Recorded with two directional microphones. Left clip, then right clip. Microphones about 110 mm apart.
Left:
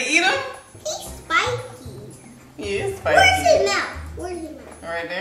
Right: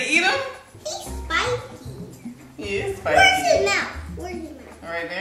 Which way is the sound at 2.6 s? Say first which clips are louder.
Left 1 dB; 20° left (ahead or behind).